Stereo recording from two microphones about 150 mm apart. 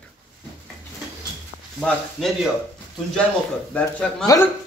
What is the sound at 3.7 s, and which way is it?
Speech, 5° left (ahead or behind).